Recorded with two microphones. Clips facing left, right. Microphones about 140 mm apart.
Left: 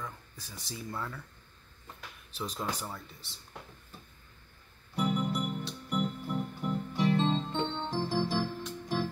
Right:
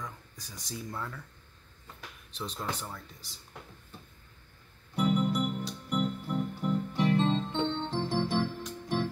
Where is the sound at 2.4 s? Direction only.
10° left (ahead or behind).